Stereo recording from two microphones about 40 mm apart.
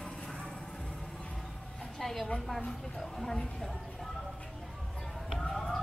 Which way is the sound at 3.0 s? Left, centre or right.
Centre.